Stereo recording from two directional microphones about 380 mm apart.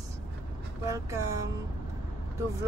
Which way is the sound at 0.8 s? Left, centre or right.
Centre.